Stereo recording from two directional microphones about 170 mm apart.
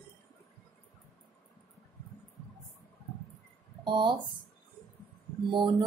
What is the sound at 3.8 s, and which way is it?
Speech, 25° right (ahead or behind).